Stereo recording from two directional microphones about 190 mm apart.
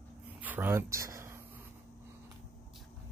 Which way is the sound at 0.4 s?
10° right (ahead or behind).